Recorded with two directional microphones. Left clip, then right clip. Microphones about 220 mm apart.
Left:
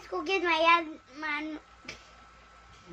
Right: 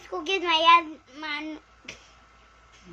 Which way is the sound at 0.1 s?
15° right (ahead or behind).